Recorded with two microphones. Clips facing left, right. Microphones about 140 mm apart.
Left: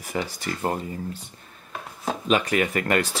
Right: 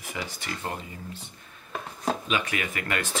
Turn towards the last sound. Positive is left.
turn(degrees=35)  # may be behind; listen again after turning